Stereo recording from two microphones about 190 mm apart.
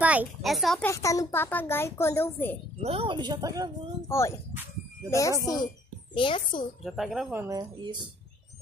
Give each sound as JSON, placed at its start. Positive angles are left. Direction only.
{"t": 0.0, "sound": "speech", "side_deg": -5}
{"t": 0.8, "sound": "a child's voice", "side_deg": 15}
{"t": 2.8, "sound": "a woman's voice", "side_deg": -30}
{"t": 4.1, "sound": "a child's voice", "side_deg": 15}
{"t": 5.4, "sound": "a child's voice", "side_deg": 20}
{"t": 6.8, "sound": "speech", "side_deg": 0}